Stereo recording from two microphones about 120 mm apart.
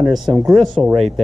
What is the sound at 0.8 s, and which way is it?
Speech, 5° left (ahead or behind).